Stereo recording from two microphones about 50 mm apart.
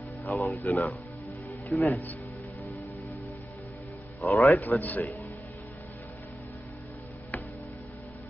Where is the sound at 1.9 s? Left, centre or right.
Left.